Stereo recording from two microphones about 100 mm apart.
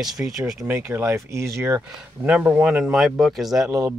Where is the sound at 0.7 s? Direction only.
25° right (ahead or behind).